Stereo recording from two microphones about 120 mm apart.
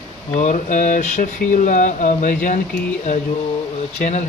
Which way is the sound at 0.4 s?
90° left.